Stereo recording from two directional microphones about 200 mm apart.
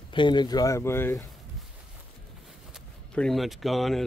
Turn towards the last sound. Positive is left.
turn(degrees=0)  # may be behind; listen again after turning